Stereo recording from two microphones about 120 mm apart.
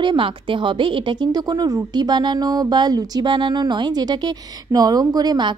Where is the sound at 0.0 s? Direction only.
45° right (ahead or behind).